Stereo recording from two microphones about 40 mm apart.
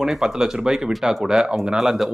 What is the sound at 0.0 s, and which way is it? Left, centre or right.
Speech, centre.